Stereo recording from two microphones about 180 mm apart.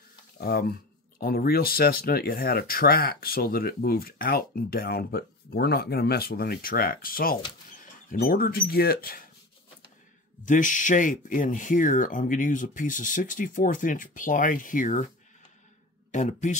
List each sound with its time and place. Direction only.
0.4 s speech: 60° left (ahead or behind)
10.4 s speech: 45° left (ahead or behind)
16.1 s speech: 45° left (ahead or behind)